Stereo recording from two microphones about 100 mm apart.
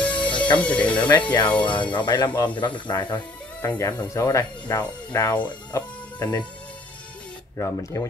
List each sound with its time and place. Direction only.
0.0 s music: 15° left (ahead or behind)
0.6 s speech: 15° left (ahead or behind)
1.2 s speech: 50° left (ahead or behind)
3.6 s speech: 25° left (ahead or behind)
7.5 s speech: 30° left (ahead or behind)